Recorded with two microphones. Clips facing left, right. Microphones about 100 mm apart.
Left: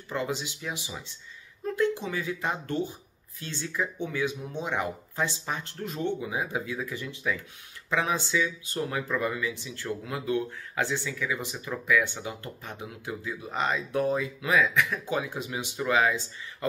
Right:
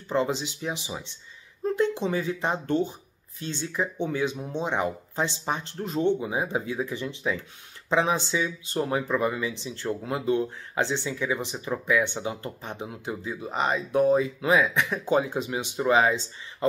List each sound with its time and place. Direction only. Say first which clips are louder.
0.1 s speech: right 5 dB; 25° right (ahead or behind)